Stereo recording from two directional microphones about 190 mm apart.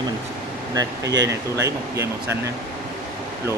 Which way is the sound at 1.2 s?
15° right (ahead or behind).